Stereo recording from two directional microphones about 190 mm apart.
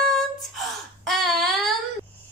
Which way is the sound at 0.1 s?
Centre (ahead or behind).